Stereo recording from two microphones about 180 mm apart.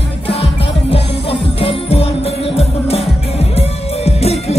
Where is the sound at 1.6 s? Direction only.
30° left (ahead or behind).